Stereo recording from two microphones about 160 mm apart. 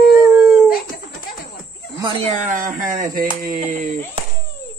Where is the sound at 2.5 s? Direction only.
55° right (ahead or behind).